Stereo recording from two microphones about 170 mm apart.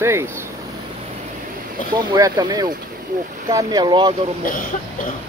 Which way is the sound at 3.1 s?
45° right (ahead or behind).